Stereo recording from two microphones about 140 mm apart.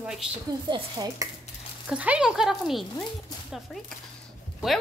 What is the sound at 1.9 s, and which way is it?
Speech, 10° right (ahead or behind).